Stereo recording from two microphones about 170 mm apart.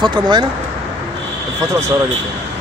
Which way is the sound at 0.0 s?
25° right (ahead or behind).